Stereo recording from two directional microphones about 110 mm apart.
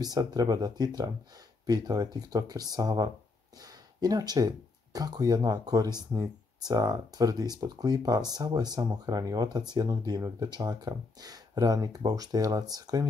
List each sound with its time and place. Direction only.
0.0 s speech: 35° right (ahead or behind)